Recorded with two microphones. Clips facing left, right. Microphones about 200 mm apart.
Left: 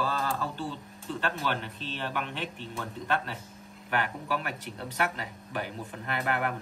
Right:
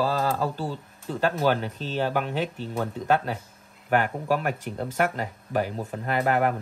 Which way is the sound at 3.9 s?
45° right (ahead or behind).